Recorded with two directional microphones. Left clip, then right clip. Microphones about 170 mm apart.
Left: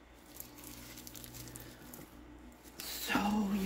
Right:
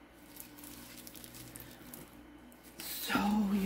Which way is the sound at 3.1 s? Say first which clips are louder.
Right 1 dB; 10° right (ahead or behind).